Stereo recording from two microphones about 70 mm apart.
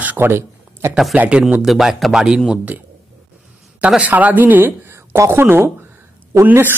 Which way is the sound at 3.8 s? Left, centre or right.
Centre.